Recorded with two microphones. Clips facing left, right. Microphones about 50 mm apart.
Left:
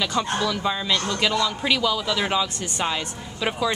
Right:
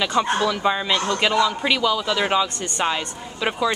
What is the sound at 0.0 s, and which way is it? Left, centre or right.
A woman's voice, right.